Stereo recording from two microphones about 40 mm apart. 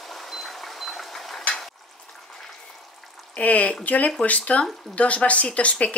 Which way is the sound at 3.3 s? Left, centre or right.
Left.